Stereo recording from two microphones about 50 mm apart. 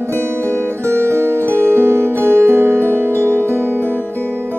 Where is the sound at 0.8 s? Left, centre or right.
Right.